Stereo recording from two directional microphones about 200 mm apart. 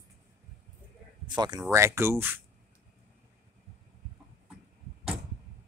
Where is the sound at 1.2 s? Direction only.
20° right (ahead or behind).